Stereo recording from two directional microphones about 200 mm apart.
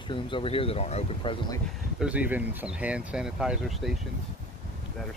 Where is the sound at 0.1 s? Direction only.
25° left (ahead or behind).